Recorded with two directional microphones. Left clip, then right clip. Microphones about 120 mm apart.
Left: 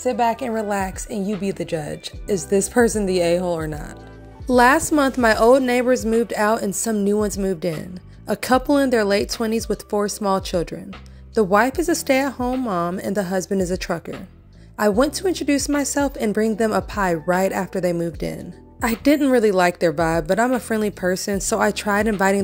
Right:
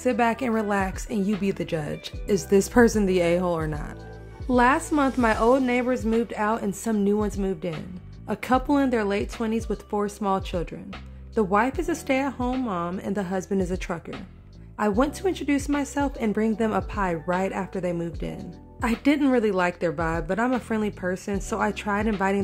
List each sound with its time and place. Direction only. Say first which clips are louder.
0.0 s a woman's voice: left 3 dB; 10° right (ahead or behind)
0.7 s a woman's voice: left 3 dB; 15° left (ahead or behind)
1.1 s speech: left 2 dB; centre (ahead or behind)
4.5 s a woman's voice: left 6 dB; 30° left (ahead or behind)